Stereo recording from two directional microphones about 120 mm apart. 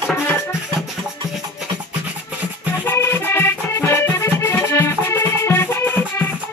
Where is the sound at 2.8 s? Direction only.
20° left (ahead or behind).